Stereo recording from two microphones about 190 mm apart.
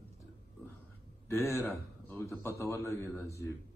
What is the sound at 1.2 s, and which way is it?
A man's voice, 15° left (ahead or behind).